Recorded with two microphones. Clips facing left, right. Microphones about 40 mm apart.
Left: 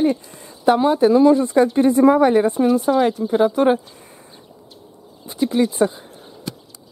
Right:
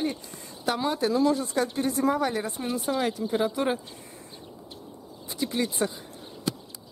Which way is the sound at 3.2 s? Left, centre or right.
Centre.